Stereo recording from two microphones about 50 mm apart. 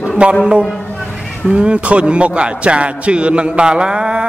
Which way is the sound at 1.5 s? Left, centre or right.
Right.